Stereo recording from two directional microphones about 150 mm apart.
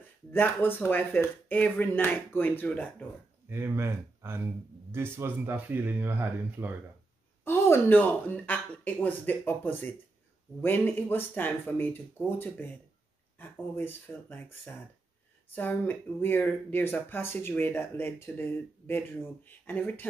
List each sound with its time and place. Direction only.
0.3 s speech: 15° left (ahead or behind)
3.4 s speech: 15° right (ahead or behind)
7.4 s speech: 15° left (ahead or behind)